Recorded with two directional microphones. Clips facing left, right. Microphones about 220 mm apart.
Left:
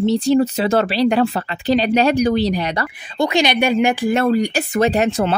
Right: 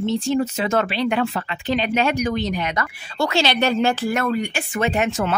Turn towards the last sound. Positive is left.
turn(degrees=35)  # may be behind; listen again after turning